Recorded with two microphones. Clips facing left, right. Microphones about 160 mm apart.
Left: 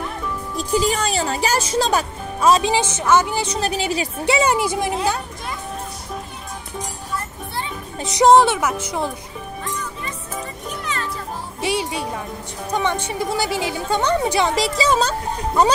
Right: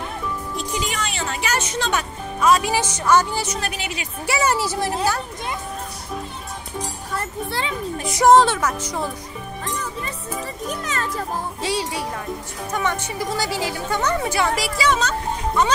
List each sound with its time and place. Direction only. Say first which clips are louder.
0.6 s speech: left 9 dB; 35° left (ahead or behind); by 3.4 s 20° left (ahead or behind)
3.4 s speech: left 6 dB; 30° left (ahead or behind)
4.3 s speech: left 3 dB; 20° left (ahead or behind)
7.2 s a child's voice: right 4 dB; 90° right
8.0 s speech: left 1 dB; 20° left (ahead or behind)
10.8 s music: left 2 dB; 45° right (ahead or behind)
11.6 s speech: left 4 dB; 20° left (ahead or behind)
13.2 s speech: left 2 dB; 20° left (ahead or behind)